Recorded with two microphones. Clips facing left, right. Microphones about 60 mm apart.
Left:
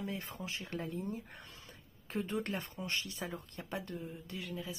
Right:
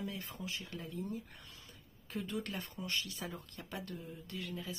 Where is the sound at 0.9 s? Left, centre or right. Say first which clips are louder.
Left 1 dB; left.